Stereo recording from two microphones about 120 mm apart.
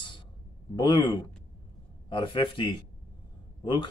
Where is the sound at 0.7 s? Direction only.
40° left (ahead or behind).